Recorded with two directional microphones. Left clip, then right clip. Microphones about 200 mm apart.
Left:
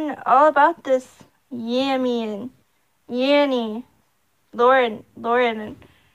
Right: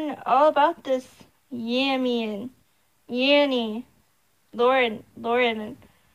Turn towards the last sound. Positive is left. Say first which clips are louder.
# left 3 dB
turn(degrees=30)  # may be behind; listen again after turning